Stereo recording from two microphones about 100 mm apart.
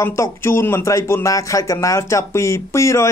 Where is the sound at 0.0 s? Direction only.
25° left (ahead or behind).